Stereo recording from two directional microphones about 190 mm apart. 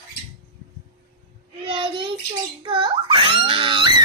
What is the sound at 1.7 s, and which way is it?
Child singing, 25° right (ahead or behind).